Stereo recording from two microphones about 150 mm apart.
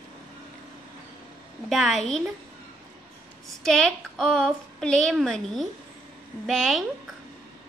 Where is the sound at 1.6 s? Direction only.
Centre (ahead or behind).